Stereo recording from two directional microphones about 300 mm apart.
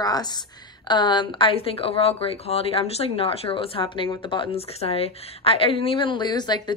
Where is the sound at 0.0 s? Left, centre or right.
Centre.